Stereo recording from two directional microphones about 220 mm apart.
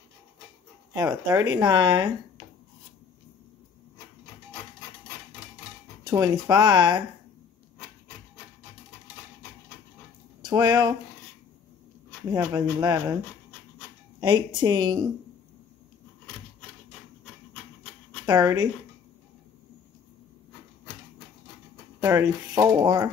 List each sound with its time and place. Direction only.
0.9 s speech: 15° right (ahead or behind)
6.0 s speech: 15° right (ahead or behind)
10.4 s speech: 15° right (ahead or behind)
12.3 s speech: 20° right (ahead or behind)
14.2 s speech: 20° right (ahead or behind)
18.2 s speech: 15° right (ahead or behind)
22.0 s speech: 10° right (ahead or behind)